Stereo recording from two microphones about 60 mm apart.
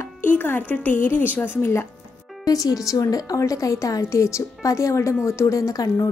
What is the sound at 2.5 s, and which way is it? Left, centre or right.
A woman's voice, left.